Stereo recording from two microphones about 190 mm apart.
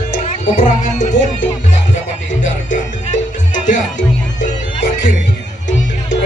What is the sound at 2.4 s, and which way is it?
Music, 40° left (ahead or behind).